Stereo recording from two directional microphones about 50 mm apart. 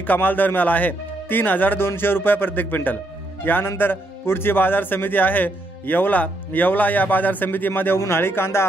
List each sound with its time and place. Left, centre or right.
0.0 s a man's voice: left
1.8 s a man's voice: left